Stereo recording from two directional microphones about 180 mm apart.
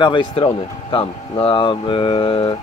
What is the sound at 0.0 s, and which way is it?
Speech, 25° left (ahead or behind).